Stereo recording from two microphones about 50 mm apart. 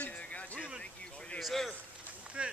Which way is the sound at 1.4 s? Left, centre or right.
Centre.